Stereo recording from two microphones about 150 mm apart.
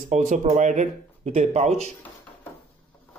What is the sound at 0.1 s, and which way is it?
Speech, 50° right (ahead or behind).